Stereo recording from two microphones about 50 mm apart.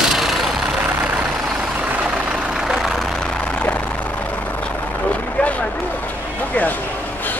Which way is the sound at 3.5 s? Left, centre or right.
Left.